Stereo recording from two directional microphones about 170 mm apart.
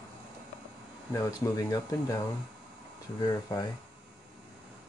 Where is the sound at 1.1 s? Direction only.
20° left (ahead or behind).